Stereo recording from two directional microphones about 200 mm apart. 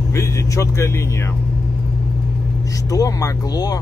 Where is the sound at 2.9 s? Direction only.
15° left (ahead or behind).